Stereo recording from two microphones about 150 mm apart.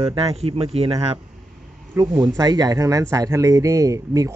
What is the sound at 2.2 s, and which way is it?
Speech, 25° right (ahead or behind).